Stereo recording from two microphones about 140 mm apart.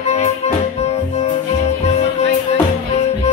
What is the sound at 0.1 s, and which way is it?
Music, 50° left (ahead or behind).